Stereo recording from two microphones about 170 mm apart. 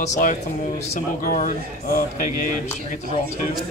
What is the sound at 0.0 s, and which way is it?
Speech, 45° left (ahead or behind).